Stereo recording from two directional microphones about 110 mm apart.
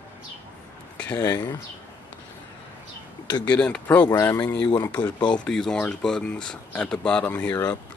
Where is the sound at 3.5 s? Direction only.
10° left (ahead or behind).